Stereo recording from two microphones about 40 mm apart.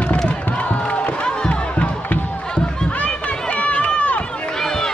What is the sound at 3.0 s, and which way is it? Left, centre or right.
Run, left.